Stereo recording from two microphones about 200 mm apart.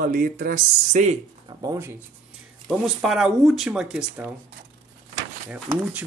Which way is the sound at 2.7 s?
Centre (ahead or behind).